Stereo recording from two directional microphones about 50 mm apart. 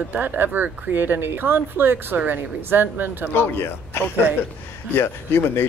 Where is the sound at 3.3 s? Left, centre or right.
Left.